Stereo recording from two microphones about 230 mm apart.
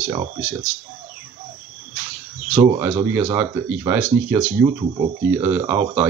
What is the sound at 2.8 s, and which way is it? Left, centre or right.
Speech, centre.